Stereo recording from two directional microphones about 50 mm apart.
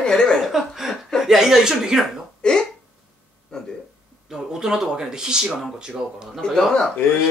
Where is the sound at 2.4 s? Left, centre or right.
Centre.